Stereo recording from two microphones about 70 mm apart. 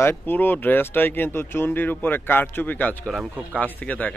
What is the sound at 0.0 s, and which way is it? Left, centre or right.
Speech, left.